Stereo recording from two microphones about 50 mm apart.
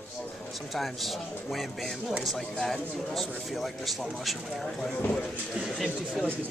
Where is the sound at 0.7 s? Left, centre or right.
Centre.